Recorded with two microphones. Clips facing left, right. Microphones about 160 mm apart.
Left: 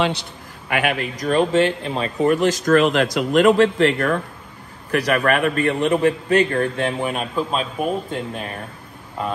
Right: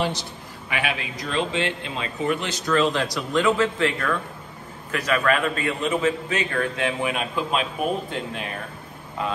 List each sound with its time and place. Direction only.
0.0 s a man's voice: 60° left (ahead or behind); by 2.8 s 45° left (ahead or behind)
2.8 s a man's voice: 65° left (ahead or behind)
6.5 s a man's voice: 40° left (ahead or behind)